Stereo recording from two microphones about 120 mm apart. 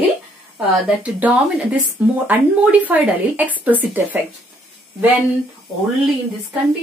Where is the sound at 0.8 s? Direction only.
10° right (ahead or behind).